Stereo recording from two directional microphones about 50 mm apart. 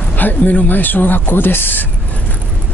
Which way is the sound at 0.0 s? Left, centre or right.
Left.